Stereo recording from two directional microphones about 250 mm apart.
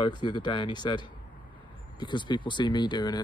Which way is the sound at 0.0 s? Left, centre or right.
Centre.